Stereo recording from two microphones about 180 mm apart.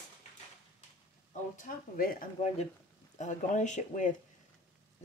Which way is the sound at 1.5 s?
50° left (ahead or behind).